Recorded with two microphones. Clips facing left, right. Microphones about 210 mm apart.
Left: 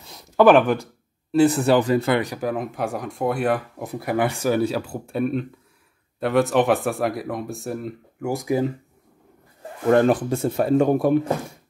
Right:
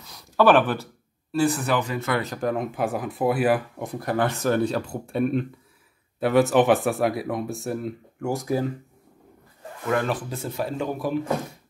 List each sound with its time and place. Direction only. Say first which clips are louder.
0.0 s a sound: left 4 dB; 20° left (ahead or behind)
1.3 s speech: left 6 dB; 25° left (ahead or behind)
1.8 s speech: left 7 dB; 35° left (ahead or behind)
2.3 s speech: even; centre (ahead or behind)
8.3 s speech: left 3 dB; 15° left (ahead or behind)
9.8 s speech: left 8 dB; 45° left (ahead or behind)